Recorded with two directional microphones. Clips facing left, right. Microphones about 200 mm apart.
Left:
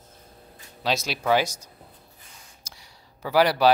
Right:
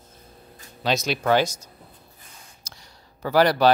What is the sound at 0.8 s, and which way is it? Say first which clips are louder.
Speech: right 2 dB; 5° left (ahead or behind).